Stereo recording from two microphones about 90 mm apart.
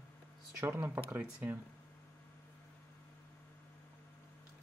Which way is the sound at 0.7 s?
25° right (ahead or behind).